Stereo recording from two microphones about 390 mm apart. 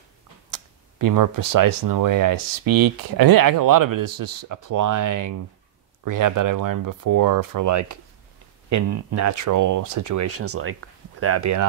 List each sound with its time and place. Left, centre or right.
0.5 s speech: right